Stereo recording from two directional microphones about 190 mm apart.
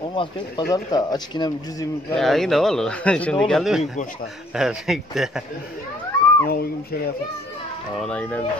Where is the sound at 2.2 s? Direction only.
Centre (ahead or behind).